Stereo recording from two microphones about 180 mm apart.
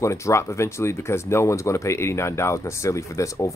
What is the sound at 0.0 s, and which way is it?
Speech, 15° left (ahead or behind).